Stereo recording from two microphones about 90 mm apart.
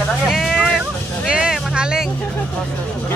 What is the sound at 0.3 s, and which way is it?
Vehicle, 5° right (ahead or behind).